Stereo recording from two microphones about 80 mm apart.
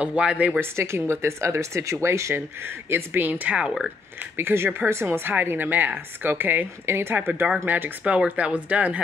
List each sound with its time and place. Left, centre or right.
0.0 s speech: centre
0.6 s speech: right; by 3.9 s centre
4.4 s speech: right
8.0 s speech: centre